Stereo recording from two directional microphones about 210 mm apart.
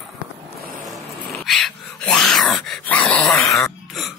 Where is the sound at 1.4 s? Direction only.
Centre (ahead or behind).